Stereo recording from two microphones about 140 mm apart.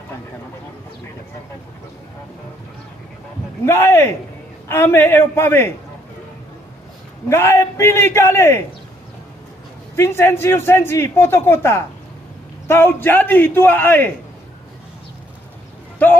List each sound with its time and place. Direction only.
3.6 s a man's voice: 15° left (ahead or behind)
7.2 s a man's voice: 20° left (ahead or behind)
9.9 s a man's voice: 15° left (ahead or behind)